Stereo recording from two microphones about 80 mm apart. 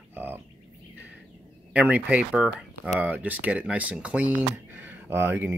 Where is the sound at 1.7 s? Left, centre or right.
Centre.